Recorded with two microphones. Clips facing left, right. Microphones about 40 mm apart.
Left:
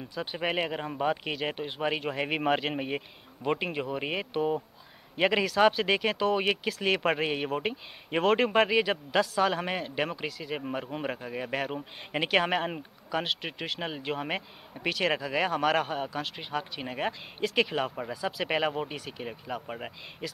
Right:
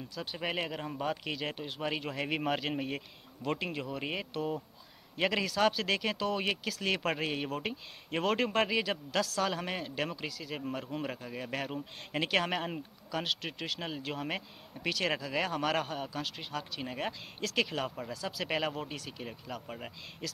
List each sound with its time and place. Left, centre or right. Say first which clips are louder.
0.1 s speech: left 6 dB; left